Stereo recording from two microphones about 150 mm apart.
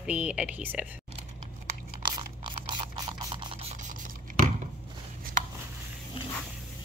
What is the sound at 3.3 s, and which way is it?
Mains hum, 40° right (ahead or behind).